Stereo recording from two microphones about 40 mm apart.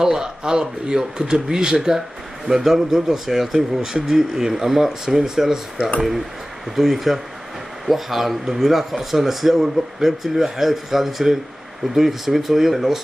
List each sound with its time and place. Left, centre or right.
0.0 s speech: centre
6.7 s speech: centre